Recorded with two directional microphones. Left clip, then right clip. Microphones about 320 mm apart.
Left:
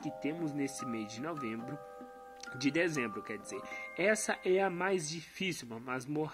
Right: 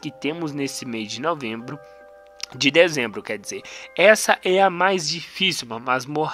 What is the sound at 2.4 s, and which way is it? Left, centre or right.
Speech, centre.